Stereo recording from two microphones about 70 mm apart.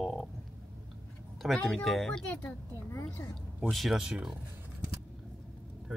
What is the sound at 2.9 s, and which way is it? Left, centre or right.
Speech, left.